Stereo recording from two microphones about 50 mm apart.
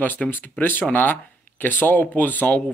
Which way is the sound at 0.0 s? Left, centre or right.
Left.